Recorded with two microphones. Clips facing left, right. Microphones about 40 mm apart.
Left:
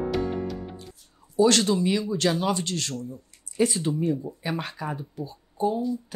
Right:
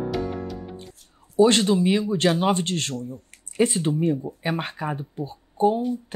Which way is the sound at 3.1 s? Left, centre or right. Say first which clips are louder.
Right 3 dB; right.